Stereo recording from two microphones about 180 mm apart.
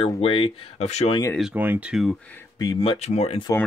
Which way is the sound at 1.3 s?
5° right (ahead or behind).